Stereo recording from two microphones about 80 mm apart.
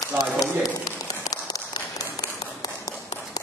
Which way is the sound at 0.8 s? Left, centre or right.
Left.